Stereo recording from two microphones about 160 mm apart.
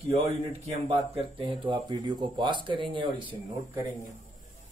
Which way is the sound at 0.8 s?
35° right (ahead or behind).